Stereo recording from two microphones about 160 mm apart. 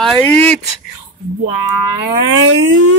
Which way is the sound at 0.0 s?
5° left (ahead or behind).